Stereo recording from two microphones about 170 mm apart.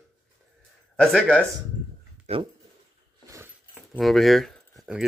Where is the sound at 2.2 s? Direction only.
35° right (ahead or behind).